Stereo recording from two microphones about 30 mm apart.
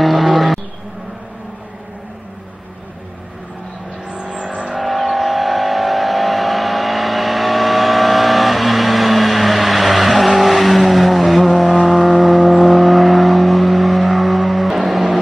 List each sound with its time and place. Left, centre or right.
0.0 s vehicle: centre
4.1 s vehicle: right
4.7 s vehicle: centre